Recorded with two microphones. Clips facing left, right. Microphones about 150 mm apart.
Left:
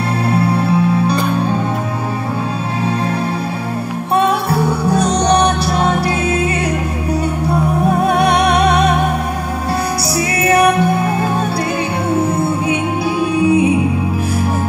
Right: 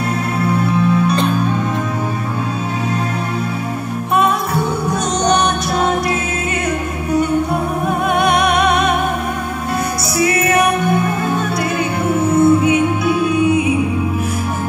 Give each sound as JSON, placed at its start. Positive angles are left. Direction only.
{"t": 0.3, "sound": "music", "side_deg": 35}
{"t": 4.1, "sound": "music", "side_deg": 35}
{"t": 8.2, "sound": "music", "side_deg": 35}
{"t": 10.1, "sound": "music", "side_deg": 30}